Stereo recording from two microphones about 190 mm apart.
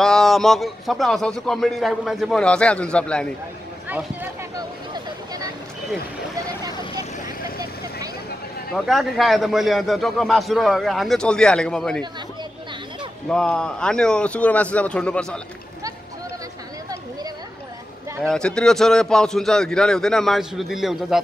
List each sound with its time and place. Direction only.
0.0 s a man's voice: centre (ahead or behind)
3.9 s a sound: 10° right (ahead or behind)
4.9 s vehicle: 20° right (ahead or behind)
8.7 s a man's voice: centre (ahead or behind)
13.3 s a man's voice: 5° left (ahead or behind)
18.2 s a man's voice: 5° left (ahead or behind)